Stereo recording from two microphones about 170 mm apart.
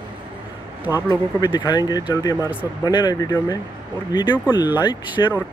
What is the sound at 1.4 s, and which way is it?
Speech, 25° left (ahead or behind).